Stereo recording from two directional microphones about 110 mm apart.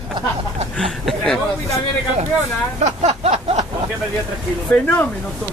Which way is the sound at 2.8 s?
80° right.